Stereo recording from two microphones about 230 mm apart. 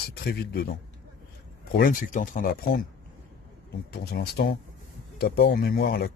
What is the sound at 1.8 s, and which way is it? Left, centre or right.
Speech, left.